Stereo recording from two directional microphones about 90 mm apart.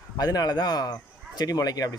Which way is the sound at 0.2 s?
45° left (ahead or behind).